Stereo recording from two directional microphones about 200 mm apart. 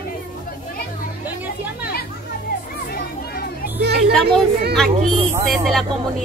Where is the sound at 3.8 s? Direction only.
55° right (ahead or behind).